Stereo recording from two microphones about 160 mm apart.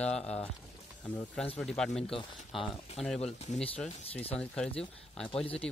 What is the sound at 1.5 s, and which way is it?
Speech, centre (ahead or behind).